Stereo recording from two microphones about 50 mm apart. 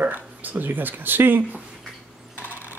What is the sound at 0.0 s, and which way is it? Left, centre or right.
Speech, right.